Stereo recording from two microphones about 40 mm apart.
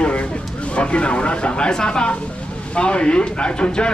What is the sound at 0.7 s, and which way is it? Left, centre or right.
Speech, left.